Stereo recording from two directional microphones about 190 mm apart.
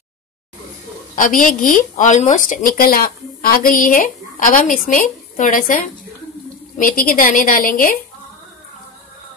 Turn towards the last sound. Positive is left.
turn(degrees=50)  # may be behind; listen again after turning